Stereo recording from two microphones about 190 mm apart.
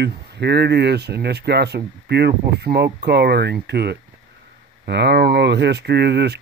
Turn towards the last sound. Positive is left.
turn(degrees=-60)  # may be behind; listen again after turning